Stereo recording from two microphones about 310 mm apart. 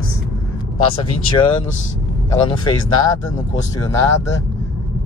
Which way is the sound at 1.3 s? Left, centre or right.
Centre.